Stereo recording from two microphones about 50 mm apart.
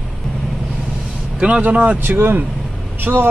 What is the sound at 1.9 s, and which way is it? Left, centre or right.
Speech, right.